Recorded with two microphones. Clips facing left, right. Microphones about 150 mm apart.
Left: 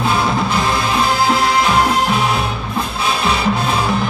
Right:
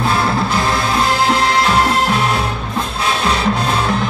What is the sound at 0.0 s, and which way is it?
Music, centre (ahead or behind).